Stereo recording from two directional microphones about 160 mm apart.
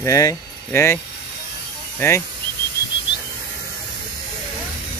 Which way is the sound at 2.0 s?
15° left (ahead or behind).